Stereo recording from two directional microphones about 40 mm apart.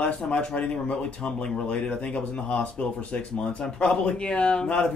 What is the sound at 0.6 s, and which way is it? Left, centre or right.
A woman's voice, left.